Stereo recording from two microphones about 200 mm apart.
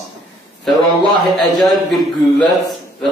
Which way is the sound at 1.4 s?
Centre (ahead or behind).